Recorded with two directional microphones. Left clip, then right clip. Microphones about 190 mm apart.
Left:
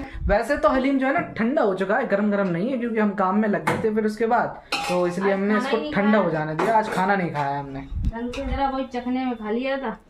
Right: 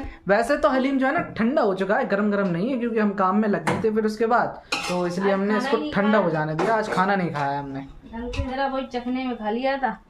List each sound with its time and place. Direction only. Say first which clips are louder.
0.3 s a woman's voice: right 1 dB; 45° right (ahead or behind)
0.7 s a woman's voice: left 1 dB; 5° right (ahead or behind)